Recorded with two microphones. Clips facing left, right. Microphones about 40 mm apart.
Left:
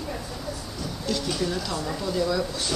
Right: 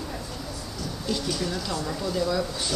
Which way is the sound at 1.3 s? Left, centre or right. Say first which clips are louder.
Left 1 dB; centre.